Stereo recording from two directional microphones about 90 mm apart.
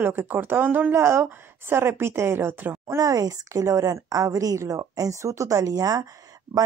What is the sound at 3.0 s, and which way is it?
Speech, 40° right (ahead or behind).